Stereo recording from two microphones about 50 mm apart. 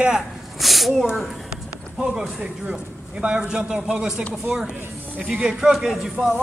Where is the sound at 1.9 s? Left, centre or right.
Centre.